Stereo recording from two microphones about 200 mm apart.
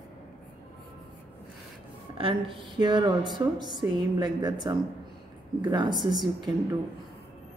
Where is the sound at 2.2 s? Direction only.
25° right (ahead or behind).